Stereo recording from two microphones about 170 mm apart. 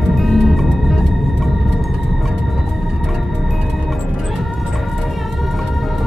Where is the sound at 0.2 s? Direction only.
Centre (ahead or behind).